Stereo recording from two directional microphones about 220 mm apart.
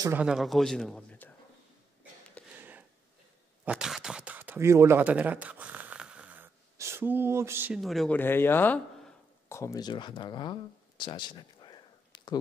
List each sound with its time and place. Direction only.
0.0 s speech: 5° right (ahead or behind)
2.4 s a sound: 5° left (ahead or behind)
3.6 s speech: 5° right (ahead or behind); by 12.4 s 20° left (ahead or behind)